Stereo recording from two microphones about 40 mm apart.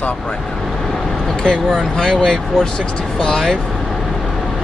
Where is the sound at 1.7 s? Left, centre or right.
Centre.